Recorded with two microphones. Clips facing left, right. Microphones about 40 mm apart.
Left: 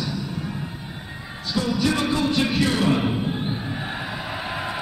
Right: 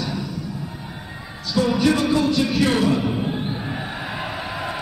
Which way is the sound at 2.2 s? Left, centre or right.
Left.